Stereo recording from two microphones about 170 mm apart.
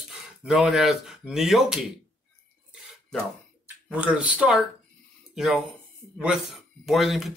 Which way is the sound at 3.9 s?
5° right (ahead or behind).